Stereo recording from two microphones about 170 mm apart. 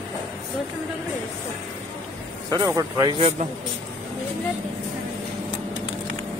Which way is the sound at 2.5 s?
20° right (ahead or behind).